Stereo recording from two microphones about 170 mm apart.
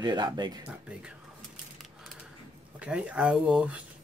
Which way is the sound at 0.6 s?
5° right (ahead or behind).